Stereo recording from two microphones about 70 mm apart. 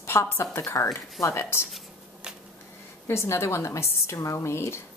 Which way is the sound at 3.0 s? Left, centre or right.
Left.